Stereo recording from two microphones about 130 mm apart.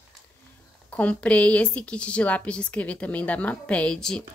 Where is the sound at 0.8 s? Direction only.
10° left (ahead or behind).